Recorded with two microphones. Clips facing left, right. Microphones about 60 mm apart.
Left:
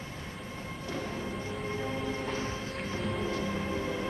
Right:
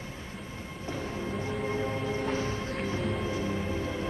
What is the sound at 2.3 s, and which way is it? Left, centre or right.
Music, right.